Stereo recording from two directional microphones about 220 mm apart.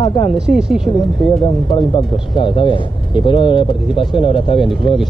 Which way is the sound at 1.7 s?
20° left (ahead or behind).